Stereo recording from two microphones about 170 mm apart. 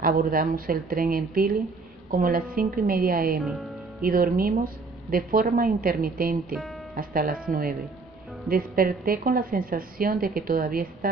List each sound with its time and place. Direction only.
0.0 s a woman's voice: 60° right (ahead or behind)
3.3 s speech: centre (ahead or behind)
4.0 s a woman's voice: 60° right (ahead or behind)